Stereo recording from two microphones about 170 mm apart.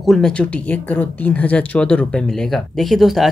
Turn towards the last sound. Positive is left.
turn(degrees=0)  # may be behind; listen again after turning